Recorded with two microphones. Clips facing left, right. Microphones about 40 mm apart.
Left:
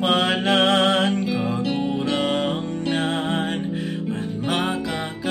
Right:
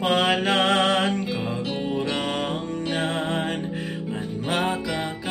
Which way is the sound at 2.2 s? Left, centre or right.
Centre.